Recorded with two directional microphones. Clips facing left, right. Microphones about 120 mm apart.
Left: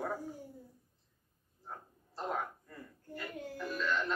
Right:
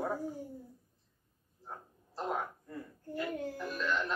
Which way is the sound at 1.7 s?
15° right (ahead or behind).